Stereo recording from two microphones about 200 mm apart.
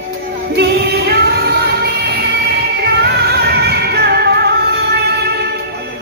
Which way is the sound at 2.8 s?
55° right (ahead or behind).